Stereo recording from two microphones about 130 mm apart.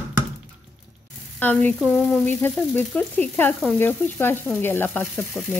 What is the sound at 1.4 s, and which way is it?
Sizzle, 10° left (ahead or behind).